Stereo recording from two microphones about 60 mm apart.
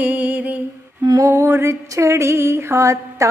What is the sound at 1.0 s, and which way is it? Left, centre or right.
Lullaby, right.